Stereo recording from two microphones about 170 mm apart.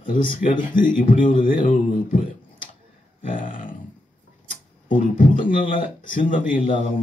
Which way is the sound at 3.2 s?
50° left (ahead or behind).